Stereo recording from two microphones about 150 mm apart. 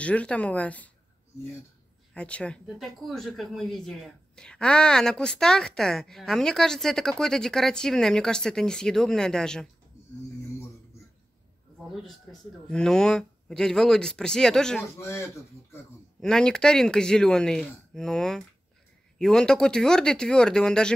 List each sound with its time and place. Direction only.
0.0 s a woman's voice: 10° left (ahead or behind)
2.1 s a woman's voice: 10° left (ahead or behind)
11.9 s a woman's voice: 5° left (ahead or behind)
15.0 s a woman's voice: 20° left (ahead or behind)
16.2 s a woman's voice: 5° left (ahead or behind)